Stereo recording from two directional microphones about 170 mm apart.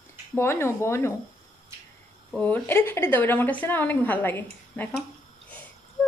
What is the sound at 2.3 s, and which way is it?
A woman's voice, 10° left (ahead or behind).